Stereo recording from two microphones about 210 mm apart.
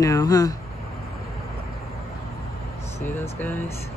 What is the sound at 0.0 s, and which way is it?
Speech, 15° left (ahead or behind).